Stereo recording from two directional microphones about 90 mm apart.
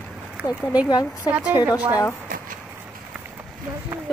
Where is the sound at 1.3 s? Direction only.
15° right (ahead or behind).